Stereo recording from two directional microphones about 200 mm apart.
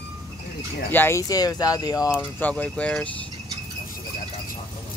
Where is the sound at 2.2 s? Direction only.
10° left (ahead or behind).